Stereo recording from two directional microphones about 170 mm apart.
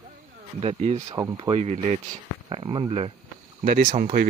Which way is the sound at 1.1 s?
20° right (ahead or behind).